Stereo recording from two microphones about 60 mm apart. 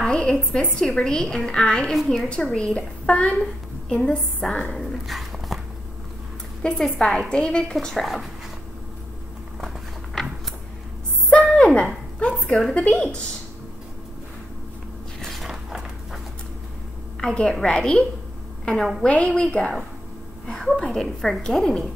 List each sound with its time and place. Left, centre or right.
0.1 s a woman's voice: centre
4.7 s dog: centre
6.6 s a woman's voice: centre
7.7 s a woman's voice: centre
9.6 s a sound: centre
11.2 s a sound: left
12.7 s a woman's voice: centre
15.1 s a sound: centre
17.2 s a woman's voice: centre
18.8 s a woman's voice: centre
19.0 s a woman's voice: centre
20.4 s a woman's voice: centre